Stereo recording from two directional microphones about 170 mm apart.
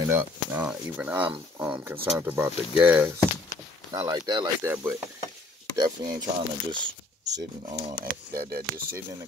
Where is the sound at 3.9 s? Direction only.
20° right (ahead or behind).